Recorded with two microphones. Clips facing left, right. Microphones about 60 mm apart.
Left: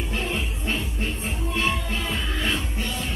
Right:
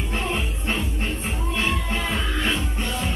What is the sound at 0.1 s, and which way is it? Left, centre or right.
Music, right.